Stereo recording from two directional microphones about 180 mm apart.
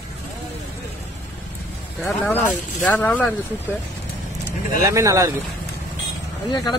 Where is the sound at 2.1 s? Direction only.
10° left (ahead or behind).